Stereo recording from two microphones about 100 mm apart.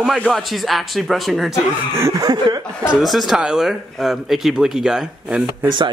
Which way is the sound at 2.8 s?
5° right (ahead or behind).